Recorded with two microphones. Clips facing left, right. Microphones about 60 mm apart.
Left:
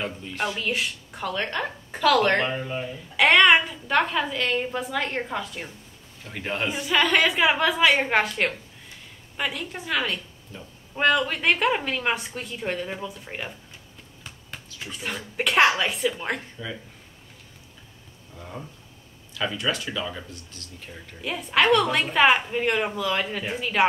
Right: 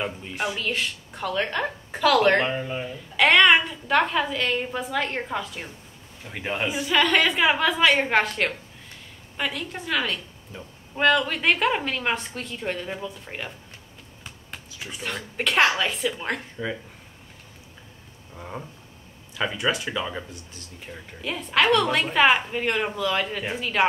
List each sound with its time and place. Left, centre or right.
0.0 s speech: centre
0.6 s a woman's voice: centre
15.0 s a woman's voice: centre
16.6 s speech: right
18.3 s a sound: right
19.3 s speech: right
21.2 s a woman's voice: centre